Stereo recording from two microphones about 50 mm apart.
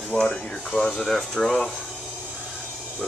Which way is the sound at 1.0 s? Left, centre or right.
Centre.